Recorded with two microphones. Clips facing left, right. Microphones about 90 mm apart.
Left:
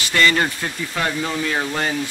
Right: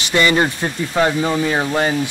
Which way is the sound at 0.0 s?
20° right (ahead or behind).